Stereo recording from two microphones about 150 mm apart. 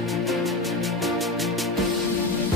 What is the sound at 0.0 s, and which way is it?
Music, centre (ahead or behind).